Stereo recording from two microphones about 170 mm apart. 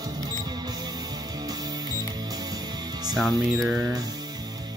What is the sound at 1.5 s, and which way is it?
Music, 25° right (ahead or behind).